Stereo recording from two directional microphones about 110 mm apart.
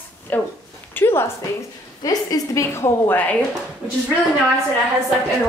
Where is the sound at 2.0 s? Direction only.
35° left (ahead or behind); by 3.4 s 15° left (ahead or behind).